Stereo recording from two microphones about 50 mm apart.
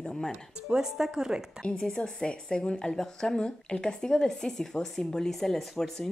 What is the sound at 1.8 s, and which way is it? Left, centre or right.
Speech, centre.